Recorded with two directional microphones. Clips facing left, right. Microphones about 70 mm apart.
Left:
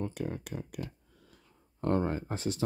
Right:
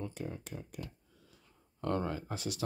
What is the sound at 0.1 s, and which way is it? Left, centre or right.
Speech, left.